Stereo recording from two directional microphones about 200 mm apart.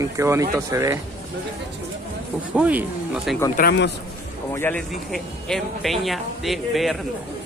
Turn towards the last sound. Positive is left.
turn(degrees=0)  # may be behind; listen again after turning